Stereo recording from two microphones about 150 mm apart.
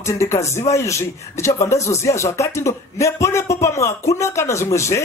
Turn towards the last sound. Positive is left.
turn(degrees=20)  # may be behind; listen again after turning